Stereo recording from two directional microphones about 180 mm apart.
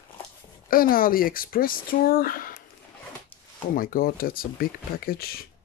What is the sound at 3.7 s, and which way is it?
Speech, 50° left (ahead or behind).